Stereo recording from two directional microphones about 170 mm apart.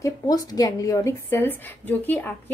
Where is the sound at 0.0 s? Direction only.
20° left (ahead or behind).